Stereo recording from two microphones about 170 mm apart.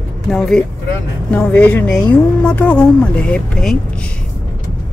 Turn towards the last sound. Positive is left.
turn(degrees=5)  # may be behind; listen again after turning